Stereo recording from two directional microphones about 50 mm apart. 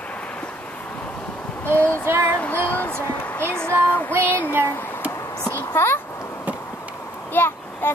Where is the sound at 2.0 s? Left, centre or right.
Right.